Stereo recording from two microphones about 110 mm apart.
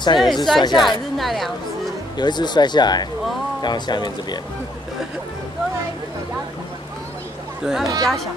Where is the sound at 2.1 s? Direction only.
40° left (ahead or behind).